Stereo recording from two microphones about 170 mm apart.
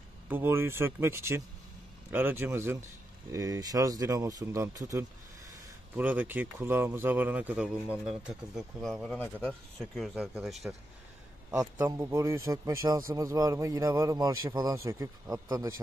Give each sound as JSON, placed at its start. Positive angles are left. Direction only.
{"t": 0.3, "sound": "a man's voice", "side_deg": -15}
{"t": 11.5, "sound": "a man's voice", "side_deg": -20}